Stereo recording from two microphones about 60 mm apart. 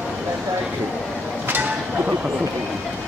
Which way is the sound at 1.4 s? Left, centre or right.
Right.